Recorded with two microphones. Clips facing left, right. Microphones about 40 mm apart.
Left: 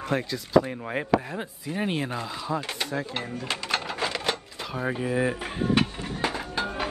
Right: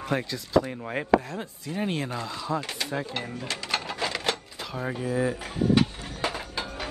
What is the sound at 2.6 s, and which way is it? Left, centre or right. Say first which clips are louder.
Speech: left 1 dB; left.